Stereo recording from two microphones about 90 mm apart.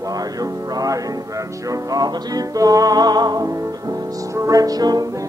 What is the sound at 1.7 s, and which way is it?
Music, 45° right (ahead or behind).